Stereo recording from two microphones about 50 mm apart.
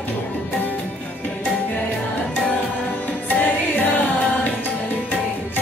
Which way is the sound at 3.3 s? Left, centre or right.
Left.